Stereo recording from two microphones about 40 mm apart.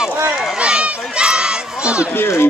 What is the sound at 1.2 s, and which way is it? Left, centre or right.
Crowd, right.